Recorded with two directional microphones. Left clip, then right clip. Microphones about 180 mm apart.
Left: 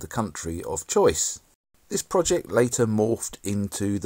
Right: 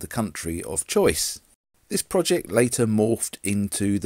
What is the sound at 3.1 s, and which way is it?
Speech, 30° right (ahead or behind).